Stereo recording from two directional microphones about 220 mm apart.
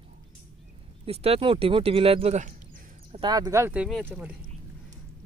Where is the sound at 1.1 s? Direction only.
25° right (ahead or behind).